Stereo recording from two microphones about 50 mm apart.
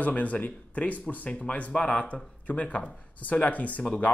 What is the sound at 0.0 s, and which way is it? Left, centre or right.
Speech, left.